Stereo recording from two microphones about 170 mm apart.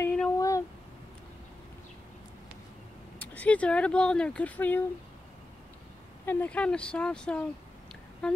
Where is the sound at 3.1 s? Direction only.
10° left (ahead or behind).